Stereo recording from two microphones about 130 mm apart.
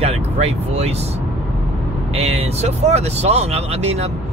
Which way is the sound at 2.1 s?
50° right (ahead or behind).